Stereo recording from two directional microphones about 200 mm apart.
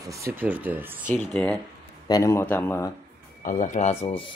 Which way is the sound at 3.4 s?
40° left (ahead or behind).